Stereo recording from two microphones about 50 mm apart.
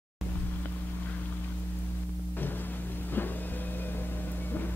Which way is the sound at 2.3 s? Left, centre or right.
Left.